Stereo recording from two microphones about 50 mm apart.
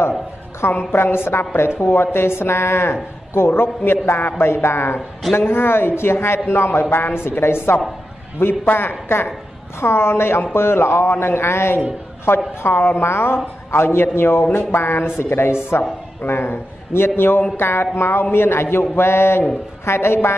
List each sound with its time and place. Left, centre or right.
0.6 s speech: left
9.8 s speech: left
12.6 s speech: left